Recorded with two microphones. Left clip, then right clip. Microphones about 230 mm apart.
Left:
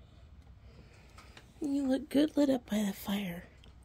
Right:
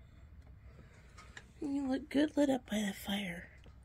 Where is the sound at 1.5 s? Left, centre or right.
Left.